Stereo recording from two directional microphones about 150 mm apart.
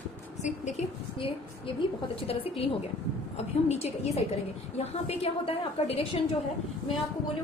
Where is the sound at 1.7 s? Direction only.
35° left (ahead or behind).